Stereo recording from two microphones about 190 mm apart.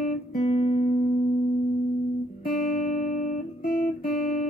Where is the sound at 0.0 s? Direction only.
35° left (ahead or behind).